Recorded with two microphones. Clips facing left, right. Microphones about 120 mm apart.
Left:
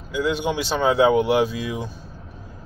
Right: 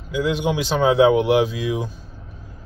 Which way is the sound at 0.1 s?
10° right (ahead or behind).